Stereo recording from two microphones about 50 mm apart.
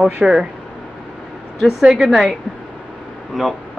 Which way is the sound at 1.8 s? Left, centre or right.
Centre.